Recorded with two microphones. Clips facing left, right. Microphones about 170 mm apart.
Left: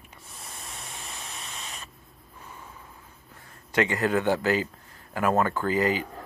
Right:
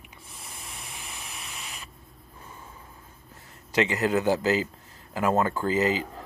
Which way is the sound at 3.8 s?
25° right (ahead or behind).